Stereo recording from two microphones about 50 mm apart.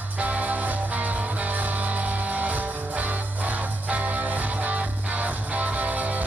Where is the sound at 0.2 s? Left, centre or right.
Right.